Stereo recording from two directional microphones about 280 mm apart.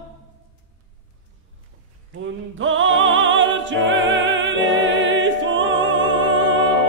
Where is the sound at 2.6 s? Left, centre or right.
Right.